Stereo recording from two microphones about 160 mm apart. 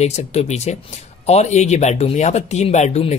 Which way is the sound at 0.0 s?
45° left (ahead or behind).